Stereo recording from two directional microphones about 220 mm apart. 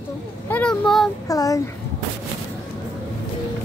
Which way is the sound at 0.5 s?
5° left (ahead or behind).